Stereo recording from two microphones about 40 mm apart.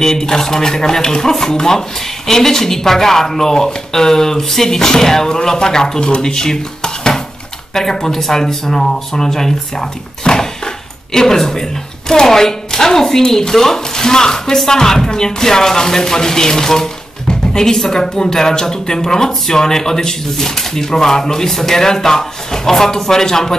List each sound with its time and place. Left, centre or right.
0.0 s speech: centre